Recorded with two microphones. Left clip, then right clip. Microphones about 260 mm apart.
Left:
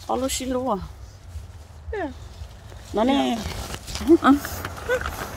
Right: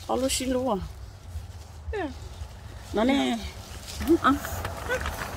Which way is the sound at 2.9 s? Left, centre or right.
Centre.